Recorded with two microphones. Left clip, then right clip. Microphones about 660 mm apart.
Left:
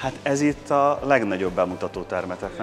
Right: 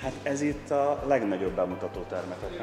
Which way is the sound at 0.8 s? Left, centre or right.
Left.